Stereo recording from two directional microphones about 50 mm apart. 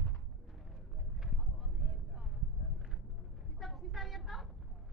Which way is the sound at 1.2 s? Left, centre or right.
Centre.